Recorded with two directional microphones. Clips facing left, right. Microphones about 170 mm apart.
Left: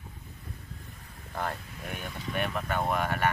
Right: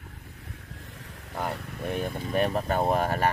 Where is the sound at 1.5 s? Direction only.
60° right (ahead or behind).